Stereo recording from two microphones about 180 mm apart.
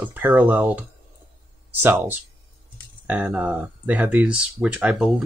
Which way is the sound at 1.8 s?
10° right (ahead or behind).